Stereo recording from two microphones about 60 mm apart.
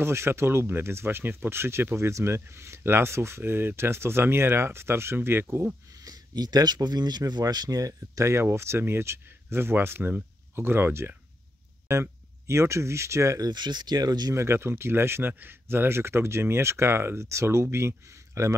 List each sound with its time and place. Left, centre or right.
0.0 s speech: right
6.0 s a sound: right
7.2 s speech: right
8.3 s speech: right
13.9 s speech: right
14.3 s speech: right